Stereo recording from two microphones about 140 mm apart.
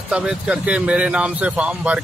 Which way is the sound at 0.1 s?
5° right (ahead or behind).